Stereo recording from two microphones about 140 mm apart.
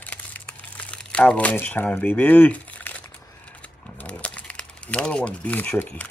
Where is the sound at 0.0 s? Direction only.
10° left (ahead or behind).